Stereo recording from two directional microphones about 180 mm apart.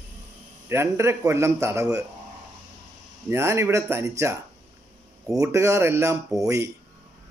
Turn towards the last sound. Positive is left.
turn(degrees=-15)  # may be behind; listen again after turning